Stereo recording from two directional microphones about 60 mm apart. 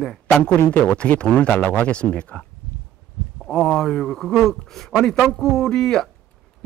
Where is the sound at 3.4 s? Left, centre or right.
Centre.